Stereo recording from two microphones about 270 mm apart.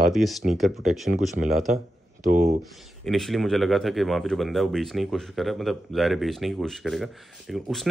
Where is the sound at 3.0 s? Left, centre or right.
Centre.